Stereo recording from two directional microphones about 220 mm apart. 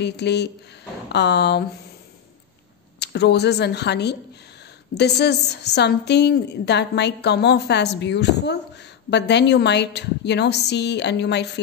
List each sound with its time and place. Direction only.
0.0 s a woman's voice: 50° left (ahead or behind)
3.0 s a woman's voice: 50° left (ahead or behind)